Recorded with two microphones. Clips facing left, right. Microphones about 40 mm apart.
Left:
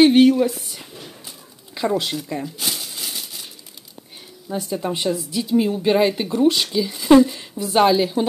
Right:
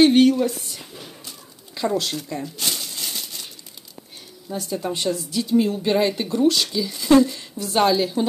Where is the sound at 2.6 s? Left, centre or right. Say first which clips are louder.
Even; centre.